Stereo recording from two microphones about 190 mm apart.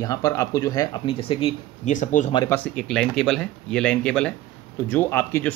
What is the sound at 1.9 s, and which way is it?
Speech, 40° left (ahead or behind).